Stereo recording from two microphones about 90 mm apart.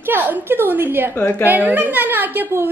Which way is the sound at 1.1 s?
25° left (ahead or behind).